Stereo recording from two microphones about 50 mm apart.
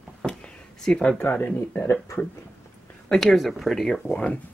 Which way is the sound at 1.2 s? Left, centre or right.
Left.